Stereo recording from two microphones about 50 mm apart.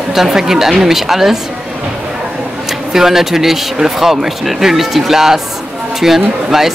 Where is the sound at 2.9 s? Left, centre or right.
Centre.